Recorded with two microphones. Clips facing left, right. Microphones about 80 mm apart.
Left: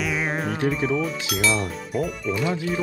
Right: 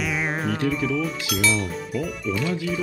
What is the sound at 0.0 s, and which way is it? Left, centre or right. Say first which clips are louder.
Music: even; centre.